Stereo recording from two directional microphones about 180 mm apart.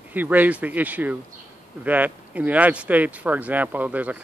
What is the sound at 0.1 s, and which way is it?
Speech, 10° right (ahead or behind).